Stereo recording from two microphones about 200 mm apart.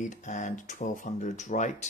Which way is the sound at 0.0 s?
40° left (ahead or behind).